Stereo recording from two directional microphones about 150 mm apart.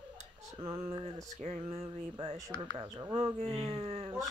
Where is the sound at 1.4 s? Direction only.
45° right (ahead or behind).